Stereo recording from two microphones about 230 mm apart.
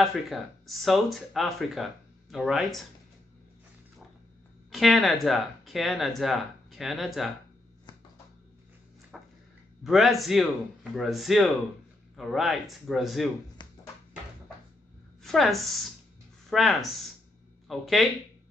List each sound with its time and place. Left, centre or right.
0.0 s speech: centre
4.6 s speech: centre
9.1 s a sound: centre
9.8 s speech: centre
13.6 s a sound: centre
15.2 s a woman's voice: centre